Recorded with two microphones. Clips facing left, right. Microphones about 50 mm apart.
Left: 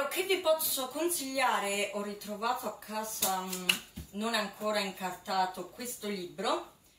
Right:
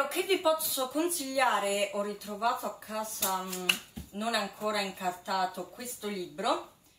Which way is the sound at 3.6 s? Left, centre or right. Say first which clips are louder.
Right 1 dB; centre.